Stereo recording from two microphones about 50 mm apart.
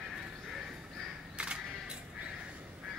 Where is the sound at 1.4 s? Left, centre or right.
Centre.